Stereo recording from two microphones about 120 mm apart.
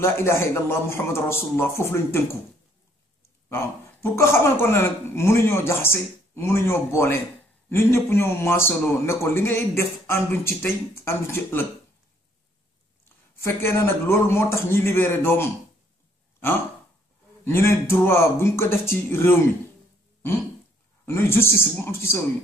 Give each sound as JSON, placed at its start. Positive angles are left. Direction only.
{"t": 0.0, "sound": "a man's voice", "side_deg": 20}
{"t": 3.4, "sound": "a man's voice", "side_deg": 20}
{"t": 13.4, "sound": "a man's voice", "side_deg": 20}
{"t": 17.5, "sound": "a man's voice", "side_deg": 20}
{"t": 21.0, "sound": "a man's voice", "side_deg": 20}